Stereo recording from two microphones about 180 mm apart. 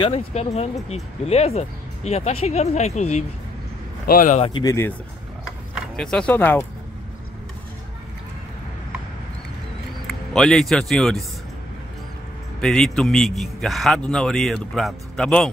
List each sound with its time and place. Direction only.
0.0 s speech: 35° left (ahead or behind)
4.1 s speech: 50° left (ahead or behind)
4.4 s speech: 25° left (ahead or behind)
5.9 s speech: 5° left (ahead or behind)
10.0 s speech: 5° left (ahead or behind)
12.5 s a man's voice: centre (ahead or behind)